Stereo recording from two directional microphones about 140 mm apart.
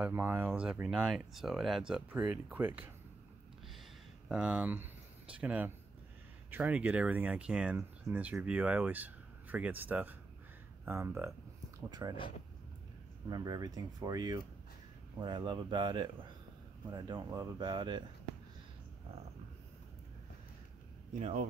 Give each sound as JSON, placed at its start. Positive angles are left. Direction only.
{"t": 0.0, "sound": "speech", "side_deg": -15}
{"t": 4.3, "sound": "speech", "side_deg": -5}
{"t": 11.9, "sound": "speech", "side_deg": -30}
{"t": 13.3, "sound": "speech", "side_deg": -30}
{"t": 21.1, "sound": "speech", "side_deg": -55}